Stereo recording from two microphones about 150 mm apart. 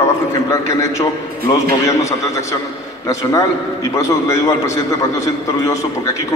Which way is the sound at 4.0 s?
20° left (ahead or behind).